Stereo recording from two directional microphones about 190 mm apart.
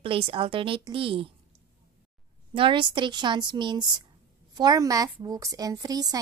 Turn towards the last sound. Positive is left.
turn(degrees=-20)  # may be behind; listen again after turning